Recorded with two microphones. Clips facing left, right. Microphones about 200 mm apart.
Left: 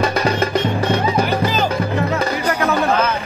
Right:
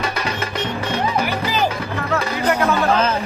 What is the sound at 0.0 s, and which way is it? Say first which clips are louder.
Music: left 7 dB; 40° left (ahead or behind).